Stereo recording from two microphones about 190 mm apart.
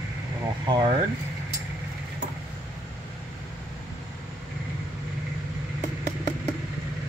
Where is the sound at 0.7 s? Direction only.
25° right (ahead or behind).